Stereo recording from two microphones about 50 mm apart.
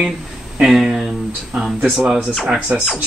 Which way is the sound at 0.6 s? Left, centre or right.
Centre.